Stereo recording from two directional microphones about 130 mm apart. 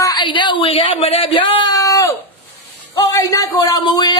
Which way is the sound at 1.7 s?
25° left (ahead or behind).